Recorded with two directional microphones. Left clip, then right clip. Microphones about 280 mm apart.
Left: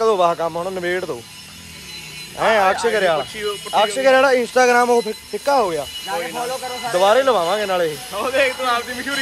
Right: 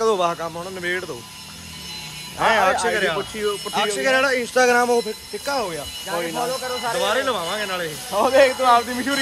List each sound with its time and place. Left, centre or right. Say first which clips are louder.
0.0 s speech: left 4 dB; centre
2.3 s speech: left 2 dB; centre
7.0 s speech: left 9 dB; centre
8.1 s speech: right 6 dB; right